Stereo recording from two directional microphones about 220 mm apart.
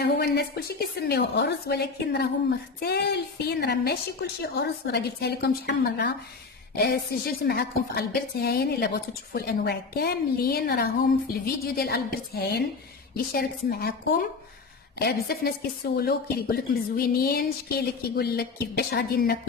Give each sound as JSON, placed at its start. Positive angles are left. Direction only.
{"t": 0.0, "sound": "speech", "side_deg": 45}
{"t": 15.0, "sound": "speech", "side_deg": 45}